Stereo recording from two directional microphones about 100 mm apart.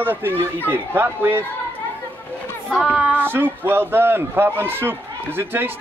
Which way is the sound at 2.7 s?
5° left (ahead or behind).